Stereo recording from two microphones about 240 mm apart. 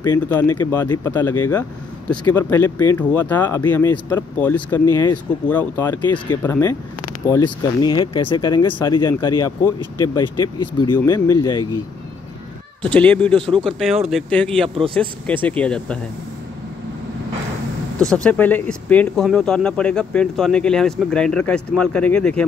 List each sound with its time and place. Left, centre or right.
0.0 s speech: centre
12.8 s speech: centre
17.9 s speech: centre